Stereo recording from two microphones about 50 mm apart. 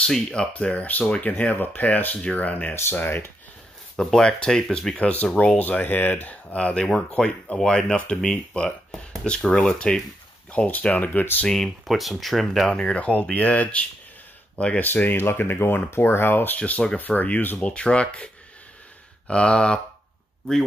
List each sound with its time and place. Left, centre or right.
0.0 s speech: centre
0.8 s speech: left
3.9 s speech: centre
5.1 s speech: left
6.5 s speech: left
10.7 s speech: left
11.4 s speech: centre
12.6 s speech: left
14.8 s speech: left
16.5 s speech: left
17.6 s speech: centre